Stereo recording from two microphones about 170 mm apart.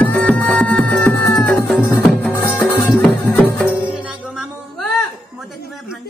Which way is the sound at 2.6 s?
25° left (ahead or behind).